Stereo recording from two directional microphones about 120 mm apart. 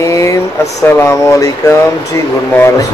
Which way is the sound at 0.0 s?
25° left (ahead or behind).